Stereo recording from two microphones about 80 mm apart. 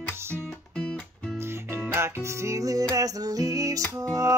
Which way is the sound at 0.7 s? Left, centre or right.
Centre.